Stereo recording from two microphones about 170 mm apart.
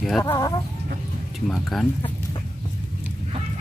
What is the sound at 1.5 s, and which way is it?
Speech, centre (ahead or behind).